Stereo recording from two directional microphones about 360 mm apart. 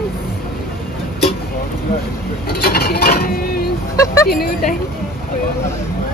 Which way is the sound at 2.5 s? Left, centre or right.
Left.